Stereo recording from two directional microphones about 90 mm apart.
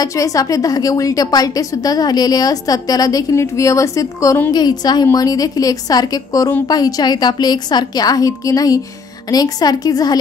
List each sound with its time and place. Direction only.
0.0 s a woman's voice: 40° left (ahead or behind)
4.5 s a woman's voice: 50° left (ahead or behind)